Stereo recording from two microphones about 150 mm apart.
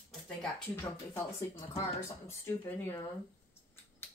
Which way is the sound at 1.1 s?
15° left (ahead or behind).